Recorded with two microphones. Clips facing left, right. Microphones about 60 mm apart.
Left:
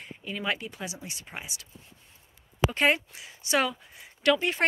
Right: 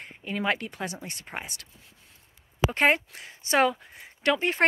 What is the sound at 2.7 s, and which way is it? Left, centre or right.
Speech, right.